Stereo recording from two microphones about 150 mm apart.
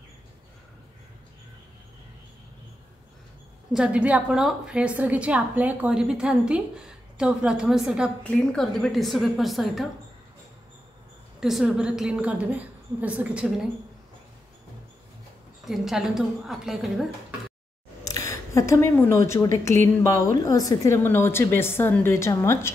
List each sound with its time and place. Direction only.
3.7 s a woman's voice: 5° right (ahead or behind)
11.3 s a woman's voice: 5° right (ahead or behind)
15.6 s a woman's voice: centre (ahead or behind)
18.0 s speech: 20° left (ahead or behind)